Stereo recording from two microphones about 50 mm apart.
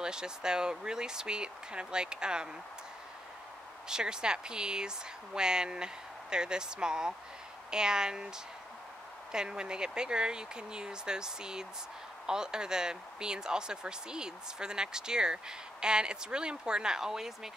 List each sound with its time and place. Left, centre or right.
0.0 s speech: centre
3.9 s speech: centre
9.3 s speech: centre